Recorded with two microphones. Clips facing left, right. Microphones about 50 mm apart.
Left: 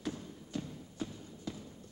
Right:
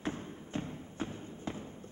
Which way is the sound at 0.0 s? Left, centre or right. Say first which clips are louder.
Right 2 dB; right.